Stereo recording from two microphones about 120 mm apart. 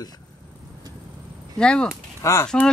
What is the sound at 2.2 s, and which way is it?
Speech, 25° left (ahead or behind).